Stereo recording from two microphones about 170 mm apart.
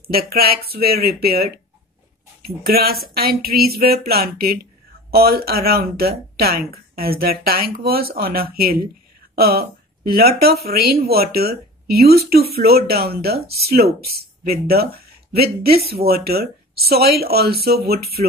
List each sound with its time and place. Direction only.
0.0 s speech: 65° right (ahead or behind)
2.6 s speech: 65° right (ahead or behind)
14.4 s speech: 65° right (ahead or behind)